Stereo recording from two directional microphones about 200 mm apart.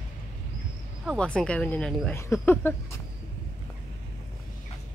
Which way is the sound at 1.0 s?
Centre (ahead or behind).